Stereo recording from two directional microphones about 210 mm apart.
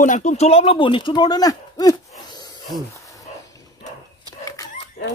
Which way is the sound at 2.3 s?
20° left (ahead or behind).